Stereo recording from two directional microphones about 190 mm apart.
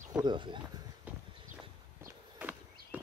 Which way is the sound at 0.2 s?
25° right (ahead or behind).